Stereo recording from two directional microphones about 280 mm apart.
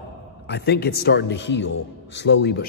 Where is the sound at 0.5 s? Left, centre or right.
Left.